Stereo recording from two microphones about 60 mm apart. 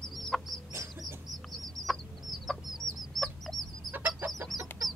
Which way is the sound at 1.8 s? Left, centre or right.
Centre.